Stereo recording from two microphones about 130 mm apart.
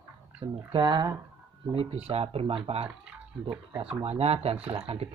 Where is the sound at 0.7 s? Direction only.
35° right (ahead or behind).